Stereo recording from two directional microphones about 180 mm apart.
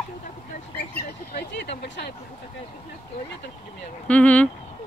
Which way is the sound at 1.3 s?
75° left (ahead or behind).